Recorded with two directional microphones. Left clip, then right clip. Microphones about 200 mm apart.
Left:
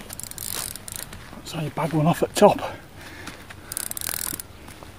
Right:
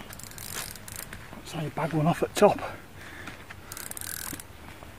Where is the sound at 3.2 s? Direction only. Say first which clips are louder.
Left 3 dB; 35° left (ahead or behind).